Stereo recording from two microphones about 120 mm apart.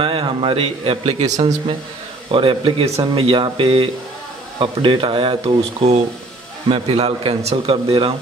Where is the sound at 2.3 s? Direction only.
45° right (ahead or behind).